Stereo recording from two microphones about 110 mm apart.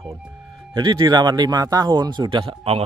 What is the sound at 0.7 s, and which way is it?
A man's voice, 40° right (ahead or behind).